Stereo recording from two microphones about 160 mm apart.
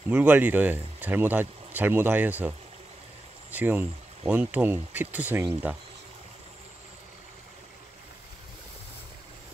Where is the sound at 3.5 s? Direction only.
10° right (ahead or behind).